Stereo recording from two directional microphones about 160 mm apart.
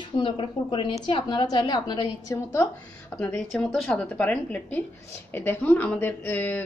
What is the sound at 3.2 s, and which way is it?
A woman's voice, 10° left (ahead or behind).